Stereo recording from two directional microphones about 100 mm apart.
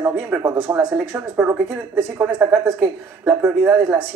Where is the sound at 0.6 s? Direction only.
25° right (ahead or behind).